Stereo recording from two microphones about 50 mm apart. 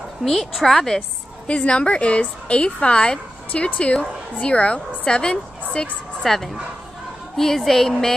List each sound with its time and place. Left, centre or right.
0.2 s a woman's voice: centre
1.5 s speech: left
6.2 s a woman's voice: centre